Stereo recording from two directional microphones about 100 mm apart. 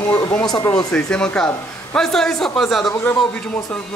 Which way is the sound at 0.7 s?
10° left (ahead or behind).